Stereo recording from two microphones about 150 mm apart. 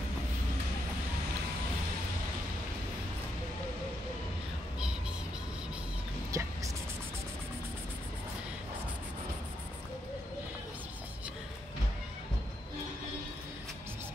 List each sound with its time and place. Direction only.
6.3 s music: 20° right (ahead or behind)